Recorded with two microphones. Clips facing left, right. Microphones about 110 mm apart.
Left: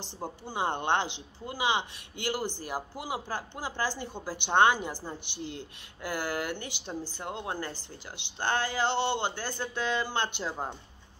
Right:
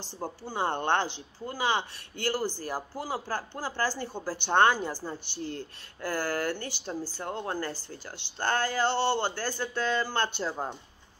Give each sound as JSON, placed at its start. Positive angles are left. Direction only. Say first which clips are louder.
{"t": 0.0, "sound": "speech", "louder": "right 2 dB", "side_deg": 15}